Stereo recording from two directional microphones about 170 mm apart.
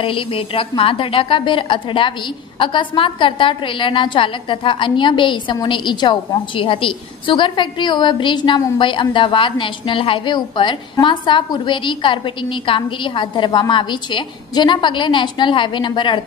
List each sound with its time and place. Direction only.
0.0 s a woman's voice: 30° left (ahead or behind)